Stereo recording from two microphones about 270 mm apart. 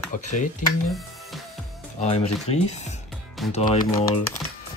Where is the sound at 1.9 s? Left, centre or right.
Left.